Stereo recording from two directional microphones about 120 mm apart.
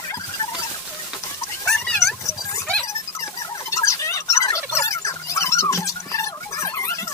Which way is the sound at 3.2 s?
25° left (ahead or behind).